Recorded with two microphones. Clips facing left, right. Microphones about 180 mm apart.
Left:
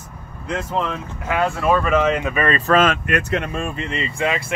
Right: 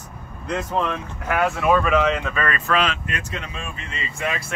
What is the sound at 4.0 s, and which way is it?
Speech, 25° left (ahead or behind).